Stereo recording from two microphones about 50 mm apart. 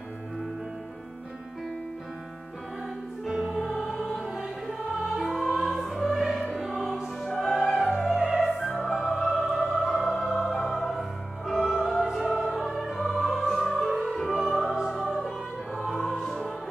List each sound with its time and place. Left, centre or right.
3.3 s choir: centre
3.7 s music: centre
4.2 s music: centre
8.1 s opera: centre
8.6 s music: centre
13.8 s music: centre
14.1 s opera: centre
15.0 s music: centre
15.7 s music: centre